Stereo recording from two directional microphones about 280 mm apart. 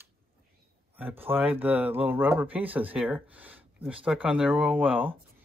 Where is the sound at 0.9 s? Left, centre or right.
Centre.